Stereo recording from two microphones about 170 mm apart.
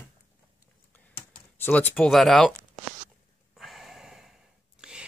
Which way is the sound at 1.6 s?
10° left (ahead or behind).